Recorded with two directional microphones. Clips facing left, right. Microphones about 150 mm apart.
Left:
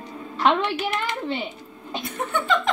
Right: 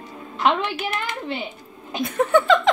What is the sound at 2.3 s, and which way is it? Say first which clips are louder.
Speech: right 7 dB; 90° right.